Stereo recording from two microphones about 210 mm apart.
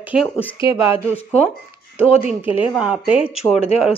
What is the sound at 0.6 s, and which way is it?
Speech, 25° left (ahead or behind).